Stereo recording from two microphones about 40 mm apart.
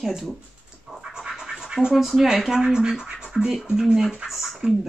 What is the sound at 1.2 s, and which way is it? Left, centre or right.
Scratch, centre.